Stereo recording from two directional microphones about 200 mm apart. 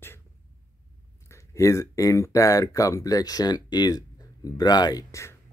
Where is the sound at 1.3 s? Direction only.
15° left (ahead or behind).